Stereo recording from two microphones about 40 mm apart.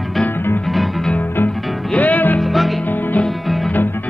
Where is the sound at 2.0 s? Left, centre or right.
Left.